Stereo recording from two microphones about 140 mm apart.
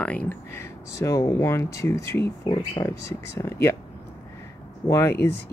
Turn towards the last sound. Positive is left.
turn(degrees=20)  # may be behind; listen again after turning